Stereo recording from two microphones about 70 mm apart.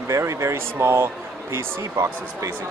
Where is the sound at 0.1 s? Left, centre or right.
Right.